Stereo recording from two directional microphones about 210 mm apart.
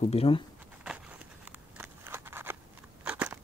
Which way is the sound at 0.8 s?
5° right (ahead or behind).